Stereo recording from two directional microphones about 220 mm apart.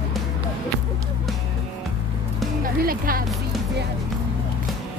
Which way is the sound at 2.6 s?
40° right (ahead or behind).